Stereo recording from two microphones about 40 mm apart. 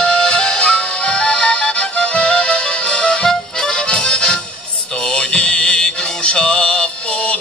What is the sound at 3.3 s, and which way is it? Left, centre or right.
Music, centre.